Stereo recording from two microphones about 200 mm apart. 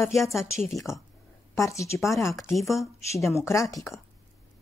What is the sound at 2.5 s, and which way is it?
Speech, centre (ahead or behind).